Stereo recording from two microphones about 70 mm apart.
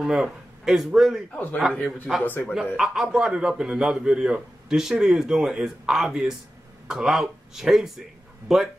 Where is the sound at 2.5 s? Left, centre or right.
Centre.